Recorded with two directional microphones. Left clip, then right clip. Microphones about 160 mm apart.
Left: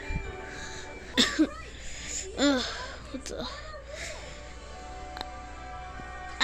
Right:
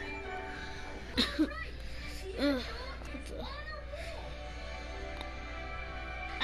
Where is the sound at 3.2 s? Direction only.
35° left (ahead or behind).